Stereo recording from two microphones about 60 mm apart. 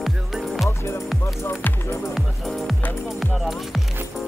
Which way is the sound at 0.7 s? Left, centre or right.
Left.